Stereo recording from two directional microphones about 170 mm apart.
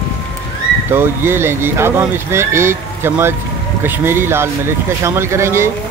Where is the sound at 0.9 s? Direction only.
15° right (ahead or behind).